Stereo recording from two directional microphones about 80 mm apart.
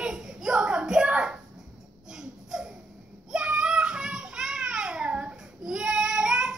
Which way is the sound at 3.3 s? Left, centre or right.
Centre.